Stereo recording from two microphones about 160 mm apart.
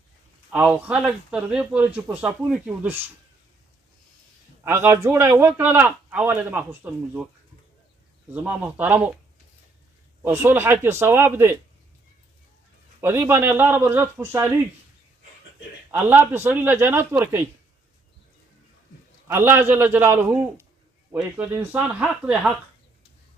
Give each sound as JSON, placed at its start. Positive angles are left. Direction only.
{"t": 0.5, "sound": "a man's voice", "side_deg": -10}
{"t": 4.6, "sound": "a man's voice", "side_deg": -15}
{"t": 8.3, "sound": "a man's voice", "side_deg": -10}
{"t": 10.2, "sound": "a man's voice", "side_deg": -15}
{"t": 13.0, "sound": "a man's voice", "side_deg": -15}
{"t": 15.9, "sound": "a man's voice", "side_deg": -10}
{"t": 19.2, "sound": "a man's voice", "side_deg": -15}